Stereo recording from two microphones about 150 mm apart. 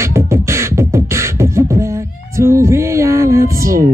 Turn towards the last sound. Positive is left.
turn(degrees=-20)  # may be behind; listen again after turning